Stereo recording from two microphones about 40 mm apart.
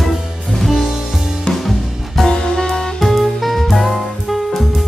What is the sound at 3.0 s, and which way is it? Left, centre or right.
Music, centre.